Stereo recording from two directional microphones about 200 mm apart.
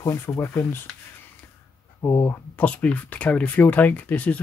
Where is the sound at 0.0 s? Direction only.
10° left (ahead or behind).